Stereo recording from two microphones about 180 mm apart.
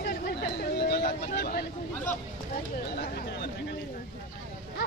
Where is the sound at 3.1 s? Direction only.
60° left (ahead or behind).